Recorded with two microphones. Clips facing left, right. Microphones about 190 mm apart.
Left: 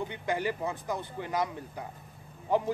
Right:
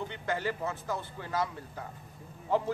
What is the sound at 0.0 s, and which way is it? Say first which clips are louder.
Speech: left 2 dB; 15° left (ahead or behind).